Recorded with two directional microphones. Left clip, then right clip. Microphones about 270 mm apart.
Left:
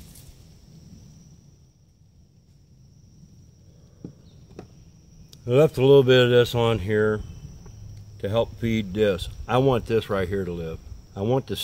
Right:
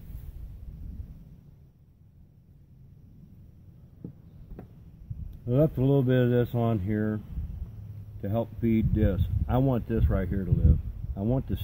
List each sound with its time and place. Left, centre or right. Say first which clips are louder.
5.3 s speech: left 7 dB; centre
8.2 s speech: left 7 dB; centre